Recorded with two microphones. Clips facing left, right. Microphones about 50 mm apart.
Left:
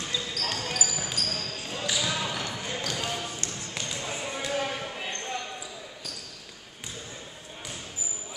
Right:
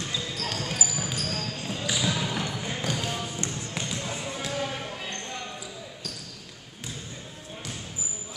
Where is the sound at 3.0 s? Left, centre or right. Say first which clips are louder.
Right 1 dB; centre.